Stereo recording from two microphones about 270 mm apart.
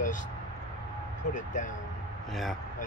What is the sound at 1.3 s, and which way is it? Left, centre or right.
Speech, left.